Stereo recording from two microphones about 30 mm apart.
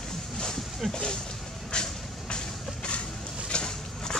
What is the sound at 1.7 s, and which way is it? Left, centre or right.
Vehicle, left.